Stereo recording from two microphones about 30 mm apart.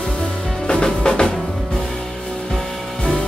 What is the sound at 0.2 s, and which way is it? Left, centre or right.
Music, left.